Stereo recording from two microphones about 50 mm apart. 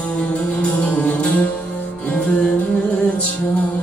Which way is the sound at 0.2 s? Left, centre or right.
Left.